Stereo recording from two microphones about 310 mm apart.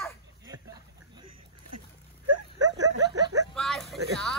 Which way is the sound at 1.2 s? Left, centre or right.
Right.